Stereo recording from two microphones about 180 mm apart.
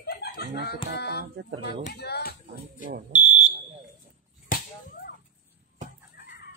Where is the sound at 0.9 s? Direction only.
65° left (ahead or behind).